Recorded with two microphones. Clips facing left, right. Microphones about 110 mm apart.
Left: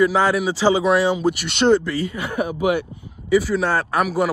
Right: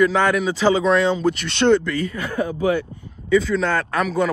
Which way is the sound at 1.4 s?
20° left (ahead or behind).